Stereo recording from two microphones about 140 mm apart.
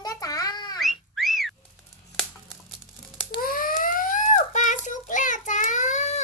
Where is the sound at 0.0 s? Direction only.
25° left (ahead or behind).